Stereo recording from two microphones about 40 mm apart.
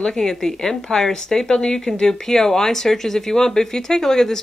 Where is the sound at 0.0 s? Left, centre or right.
Centre.